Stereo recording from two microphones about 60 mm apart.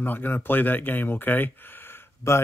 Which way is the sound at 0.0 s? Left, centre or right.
Left.